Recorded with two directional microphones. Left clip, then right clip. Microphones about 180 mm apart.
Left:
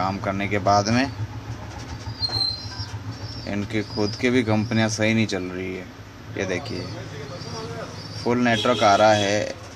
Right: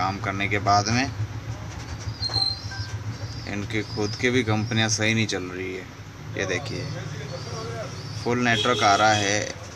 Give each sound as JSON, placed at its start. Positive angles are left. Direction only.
{"t": 0.0, "sound": "speech", "side_deg": 15}
{"t": 3.4, "sound": "speech", "side_deg": 20}
{"t": 8.3, "sound": "speech", "side_deg": 15}